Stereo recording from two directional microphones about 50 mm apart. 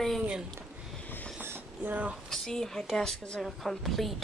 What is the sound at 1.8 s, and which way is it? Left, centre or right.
Speech, right.